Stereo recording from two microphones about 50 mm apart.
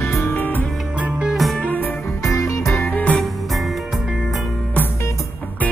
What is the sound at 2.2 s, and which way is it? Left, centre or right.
Music, left.